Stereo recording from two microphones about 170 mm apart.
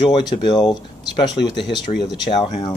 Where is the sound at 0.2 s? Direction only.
25° left (ahead or behind).